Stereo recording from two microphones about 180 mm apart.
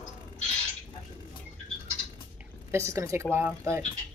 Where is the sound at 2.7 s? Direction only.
15° right (ahead or behind).